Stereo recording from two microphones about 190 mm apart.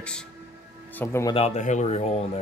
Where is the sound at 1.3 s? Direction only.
35° left (ahead or behind).